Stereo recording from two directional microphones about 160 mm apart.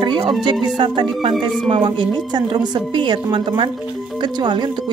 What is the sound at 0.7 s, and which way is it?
Speech, 30° right (ahead or behind).